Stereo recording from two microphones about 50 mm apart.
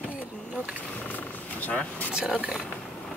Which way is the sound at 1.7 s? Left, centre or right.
Left.